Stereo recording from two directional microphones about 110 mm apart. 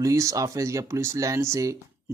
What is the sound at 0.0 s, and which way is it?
Speech, 30° right (ahead or behind).